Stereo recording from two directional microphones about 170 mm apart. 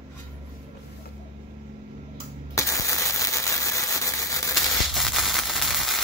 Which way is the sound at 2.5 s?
20° left (ahead or behind).